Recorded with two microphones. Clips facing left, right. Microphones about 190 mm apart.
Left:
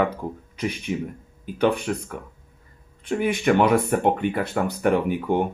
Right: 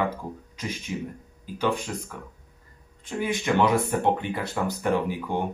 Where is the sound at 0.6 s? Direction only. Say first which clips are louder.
Left 6 dB; 65° left (ahead or behind).